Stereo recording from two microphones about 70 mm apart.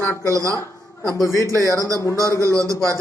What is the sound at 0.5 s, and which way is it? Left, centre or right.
Speech, left.